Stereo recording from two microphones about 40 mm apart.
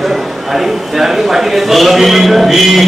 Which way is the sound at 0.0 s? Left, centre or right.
Centre.